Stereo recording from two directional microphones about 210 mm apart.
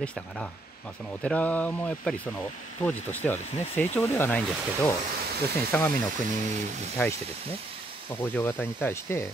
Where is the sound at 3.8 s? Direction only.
10° left (ahead or behind).